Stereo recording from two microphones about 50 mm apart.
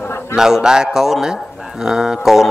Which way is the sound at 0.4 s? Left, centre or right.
Centre.